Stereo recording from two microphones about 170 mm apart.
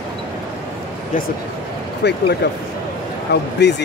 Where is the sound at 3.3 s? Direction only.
85° left.